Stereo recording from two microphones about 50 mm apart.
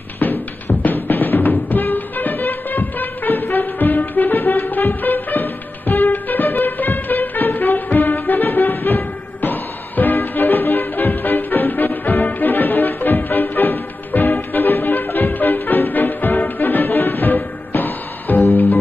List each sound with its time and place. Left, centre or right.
0.2 s music: left